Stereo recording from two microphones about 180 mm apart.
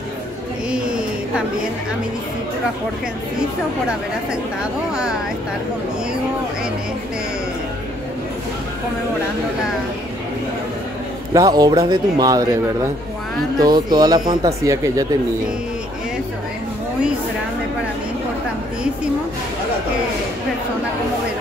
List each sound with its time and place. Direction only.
0.7 s a sound: 5° right (ahead or behind)
3.3 s speech: 5° right (ahead or behind)
11.3 s speech: 20° right (ahead or behind)
13.6 s speech: 20° right (ahead or behind)